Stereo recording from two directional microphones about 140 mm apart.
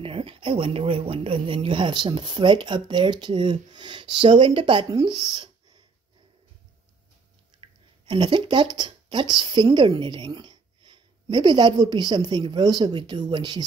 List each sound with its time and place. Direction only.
0.0 s speech: 40° right (ahead or behind)
7.6 s a sound: 35° right (ahead or behind)
8.7 s speech: 35° right (ahead or behind)